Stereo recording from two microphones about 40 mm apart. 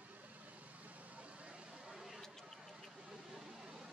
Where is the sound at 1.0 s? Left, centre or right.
Right.